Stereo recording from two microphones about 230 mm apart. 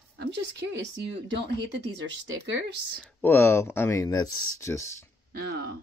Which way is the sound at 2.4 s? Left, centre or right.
Right.